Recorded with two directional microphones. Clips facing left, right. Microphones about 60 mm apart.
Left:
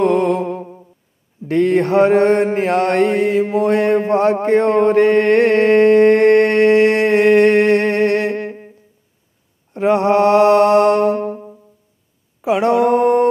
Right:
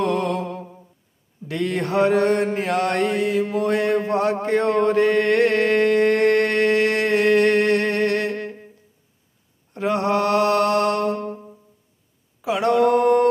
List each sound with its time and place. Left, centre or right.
0.0 s music: left
1.5 s mantra: left
9.8 s mantra: left